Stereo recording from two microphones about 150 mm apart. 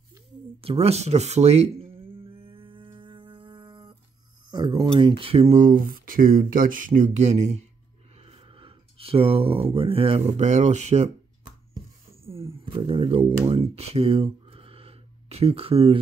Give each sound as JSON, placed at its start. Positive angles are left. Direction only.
{"t": 0.6, "sound": "a sound", "side_deg": -40}
{"t": 4.5, "sound": "speech", "side_deg": -30}
{"t": 5.6, "sound": "speech", "side_deg": -65}
{"t": 8.2, "sound": "speech", "side_deg": -40}
{"t": 12.3, "sound": "speech", "side_deg": -40}